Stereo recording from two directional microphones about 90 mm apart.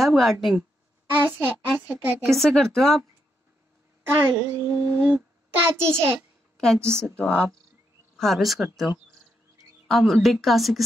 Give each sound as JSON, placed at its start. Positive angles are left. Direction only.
{"t": 0.0, "sound": "a woman's voice", "side_deg": 0}
{"t": 1.1, "sound": "a child's voice", "side_deg": -20}
{"t": 2.2, "sound": "a woman's voice", "side_deg": 5}
{"t": 4.0, "sound": "a child's voice", "side_deg": -25}
{"t": 5.6, "sound": "a child's voice", "side_deg": -30}
{"t": 7.2, "sound": "a woman's voice", "side_deg": 10}